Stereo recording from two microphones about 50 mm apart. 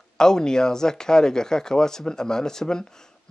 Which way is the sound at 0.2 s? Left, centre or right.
Centre.